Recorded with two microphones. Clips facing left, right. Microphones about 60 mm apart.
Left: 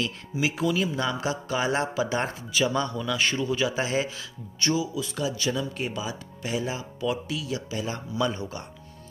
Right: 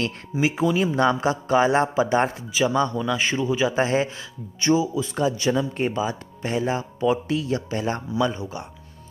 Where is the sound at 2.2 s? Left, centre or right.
Centre.